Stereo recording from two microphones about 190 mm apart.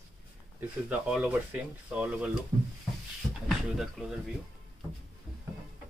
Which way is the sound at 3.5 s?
Centre (ahead or behind).